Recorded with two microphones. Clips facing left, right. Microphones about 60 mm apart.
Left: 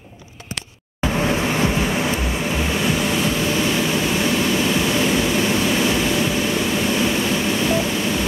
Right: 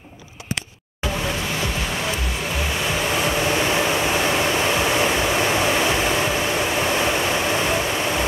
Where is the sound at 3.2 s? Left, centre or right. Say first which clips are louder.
Even; right.